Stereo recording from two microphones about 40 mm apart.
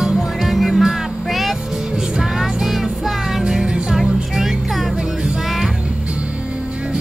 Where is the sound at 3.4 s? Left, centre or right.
Centre.